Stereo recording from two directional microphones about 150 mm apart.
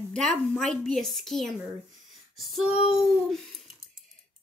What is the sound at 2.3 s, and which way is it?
Female singing, centre (ahead or behind).